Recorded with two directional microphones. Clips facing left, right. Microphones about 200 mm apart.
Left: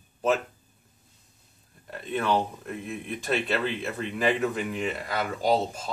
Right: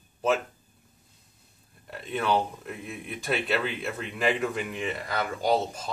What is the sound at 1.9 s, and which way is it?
Speech, centre (ahead or behind).